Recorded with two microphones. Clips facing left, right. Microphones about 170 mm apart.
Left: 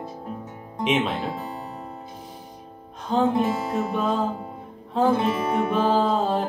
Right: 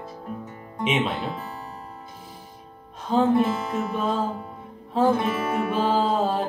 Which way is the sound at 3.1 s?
5° right (ahead or behind).